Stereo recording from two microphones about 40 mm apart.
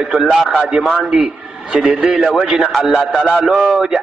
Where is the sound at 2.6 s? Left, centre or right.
Centre.